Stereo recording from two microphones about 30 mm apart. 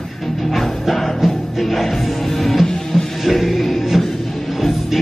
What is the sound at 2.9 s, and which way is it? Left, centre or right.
Music, centre.